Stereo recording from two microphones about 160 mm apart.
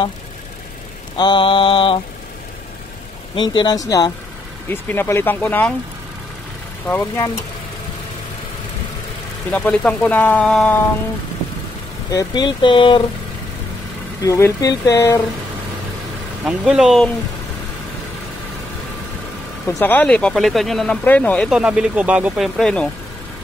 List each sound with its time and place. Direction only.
1.1 s mantra: 30° left (ahead or behind)
3.3 s speech: 25° left (ahead or behind); by 5.7 s 10° left (ahead or behind)
9.5 s speech: 10° left (ahead or behind)
12.1 s speech: 25° left (ahead or behind)
14.2 s speech: 20° left (ahead or behind)
16.4 s speech: 5° right (ahead or behind)
19.7 s speech: 10° left (ahead or behind)
21.5 s speech: 5° right (ahead or behind)
22.6 s speech: 5° left (ahead or behind)